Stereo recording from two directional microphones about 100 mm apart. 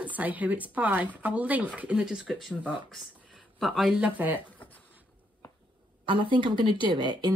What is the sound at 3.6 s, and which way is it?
Speech, centre (ahead or behind).